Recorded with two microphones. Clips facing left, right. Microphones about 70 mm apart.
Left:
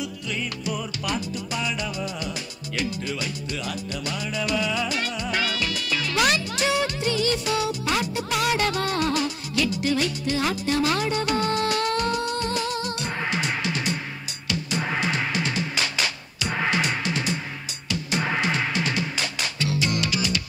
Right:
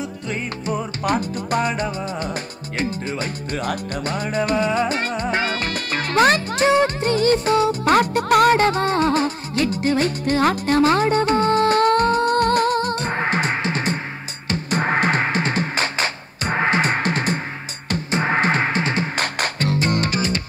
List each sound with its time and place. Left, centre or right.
0.0 s music: right